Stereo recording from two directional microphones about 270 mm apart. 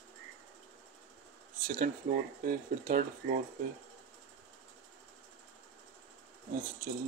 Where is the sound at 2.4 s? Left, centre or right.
Right.